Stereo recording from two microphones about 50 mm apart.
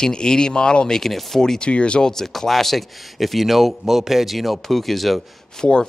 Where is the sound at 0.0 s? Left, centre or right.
Centre.